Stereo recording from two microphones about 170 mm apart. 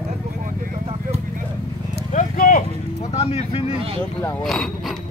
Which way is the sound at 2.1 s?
50° left (ahead or behind).